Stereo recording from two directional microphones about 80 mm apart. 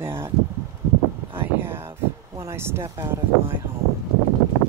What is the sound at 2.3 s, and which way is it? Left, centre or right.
Speech, right.